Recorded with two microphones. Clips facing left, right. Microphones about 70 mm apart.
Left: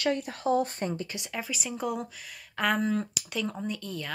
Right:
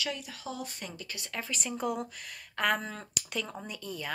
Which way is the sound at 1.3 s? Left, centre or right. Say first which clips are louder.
Right 1 dB; centre.